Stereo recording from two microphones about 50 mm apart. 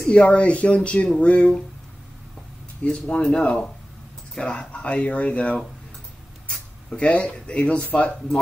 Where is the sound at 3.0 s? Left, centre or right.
Centre.